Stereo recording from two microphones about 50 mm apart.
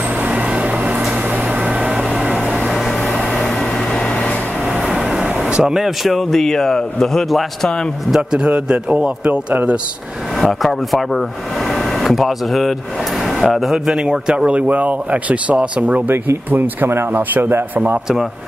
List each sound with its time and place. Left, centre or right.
0.3 s vehicle: right
1.6 s a sound: centre
4.7 s vehicle: centre
5.5 s a man's voice: centre
8.1 s speech: centre
10.4 s speech: centre; by 16.0 s right
16.4 s speech: right